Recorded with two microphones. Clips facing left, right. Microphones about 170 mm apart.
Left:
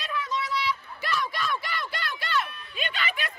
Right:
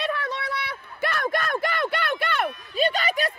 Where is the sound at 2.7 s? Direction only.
40° right (ahead or behind).